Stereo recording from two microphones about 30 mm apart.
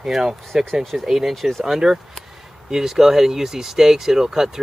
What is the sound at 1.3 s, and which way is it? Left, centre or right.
Speech, centre.